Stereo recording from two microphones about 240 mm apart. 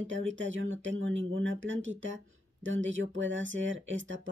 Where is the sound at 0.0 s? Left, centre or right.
Right.